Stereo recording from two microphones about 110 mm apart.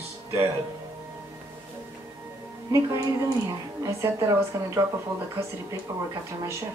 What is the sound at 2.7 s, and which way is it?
A woman's voice, 30° right (ahead or behind).